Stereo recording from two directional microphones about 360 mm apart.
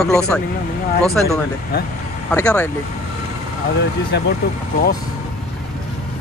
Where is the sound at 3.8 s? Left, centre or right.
Left.